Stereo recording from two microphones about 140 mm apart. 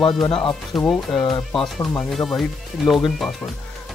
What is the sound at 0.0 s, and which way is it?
Speech, 5° left (ahead or behind).